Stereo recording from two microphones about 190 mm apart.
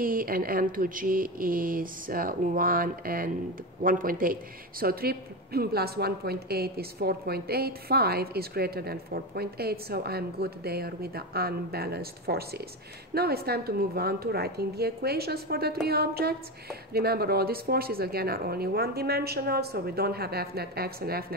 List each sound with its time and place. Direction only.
0.0 s speech: 50° right (ahead or behind)